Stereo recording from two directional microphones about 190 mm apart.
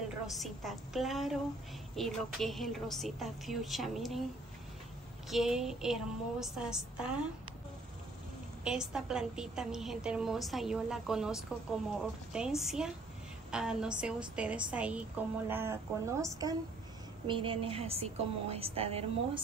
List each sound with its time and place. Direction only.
0.3 s a woman's voice: centre (ahead or behind)
5.3 s a woman's voice: centre (ahead or behind)
8.6 s a woman's voice: 5° right (ahead or behind)
17.3 s a woman's voice: 25° right (ahead or behind)